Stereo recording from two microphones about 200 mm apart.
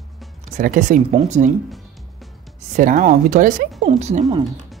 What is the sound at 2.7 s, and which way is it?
Speech, 40° right (ahead or behind).